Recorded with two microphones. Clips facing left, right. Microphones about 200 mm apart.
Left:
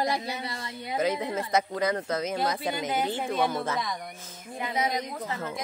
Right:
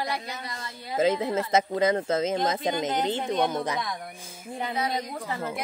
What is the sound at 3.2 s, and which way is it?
Speech, 5° left (ahead or behind).